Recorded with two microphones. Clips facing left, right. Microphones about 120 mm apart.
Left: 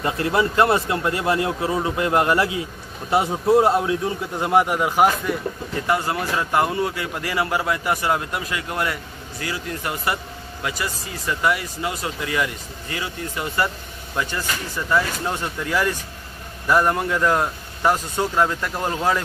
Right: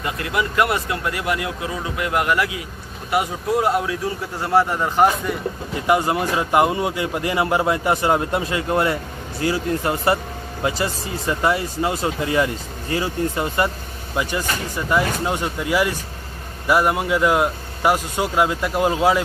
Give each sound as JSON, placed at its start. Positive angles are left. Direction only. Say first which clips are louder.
{"t": 0.0, "sound": "speech", "louder": "left 3 dB", "side_deg": 30}
{"t": 5.9, "sound": "speech", "louder": "right 4 dB", "side_deg": -20}
{"t": 14.1, "sound": "speech", "louder": "right 3 dB", "side_deg": -15}